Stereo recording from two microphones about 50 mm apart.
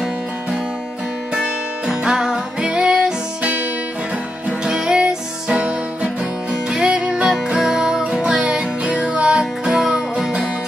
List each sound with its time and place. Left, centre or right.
1.9 s music: centre